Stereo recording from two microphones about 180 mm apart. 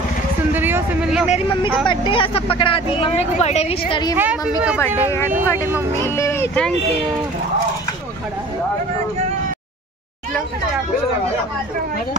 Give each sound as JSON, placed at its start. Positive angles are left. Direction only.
{"t": 0.5, "sound": "speech", "side_deg": -10}
{"t": 1.9, "sound": "speech", "side_deg": 30}
{"t": 4.2, "sound": "speech", "side_deg": -5}
{"t": 6.0, "sound": "speech", "side_deg": 15}